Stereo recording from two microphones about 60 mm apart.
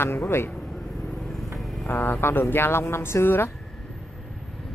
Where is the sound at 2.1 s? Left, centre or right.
Left.